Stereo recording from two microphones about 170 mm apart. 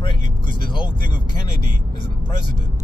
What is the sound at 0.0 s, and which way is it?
Vehicle, 30° left (ahead or behind).